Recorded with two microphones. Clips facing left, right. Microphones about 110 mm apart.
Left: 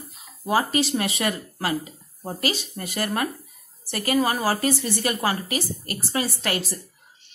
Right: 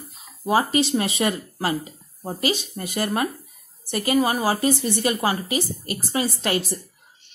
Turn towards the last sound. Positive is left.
turn(degrees=-20)  # may be behind; listen again after turning